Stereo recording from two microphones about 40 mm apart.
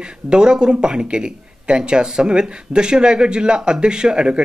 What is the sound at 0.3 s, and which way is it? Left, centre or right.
Speech, right.